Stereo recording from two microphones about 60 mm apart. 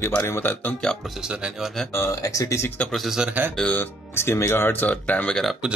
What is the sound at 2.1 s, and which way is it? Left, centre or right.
Speech, left.